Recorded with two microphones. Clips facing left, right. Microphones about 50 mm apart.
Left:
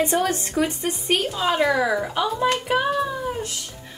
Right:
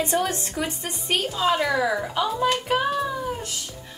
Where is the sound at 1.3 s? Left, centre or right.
Centre.